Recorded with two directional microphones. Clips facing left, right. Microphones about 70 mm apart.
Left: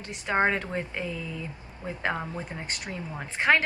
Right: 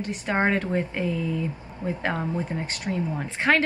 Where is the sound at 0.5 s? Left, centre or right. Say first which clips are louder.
Right 4 dB; centre.